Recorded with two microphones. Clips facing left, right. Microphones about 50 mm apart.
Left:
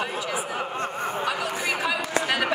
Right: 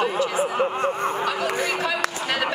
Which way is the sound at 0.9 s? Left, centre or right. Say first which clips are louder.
Right 4 dB; right.